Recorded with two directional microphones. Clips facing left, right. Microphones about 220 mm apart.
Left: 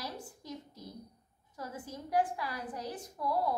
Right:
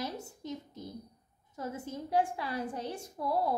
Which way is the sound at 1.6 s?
25° right (ahead or behind).